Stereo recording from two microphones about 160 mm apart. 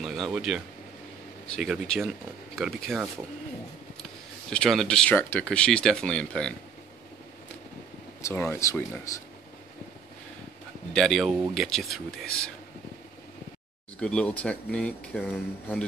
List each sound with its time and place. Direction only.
0.0 s speech: centre (ahead or behind)
4.5 s speech: 5° left (ahead or behind)
8.3 s speech: 15° left (ahead or behind)
10.9 s speech: centre (ahead or behind)
13.9 s speech: 5° left (ahead or behind)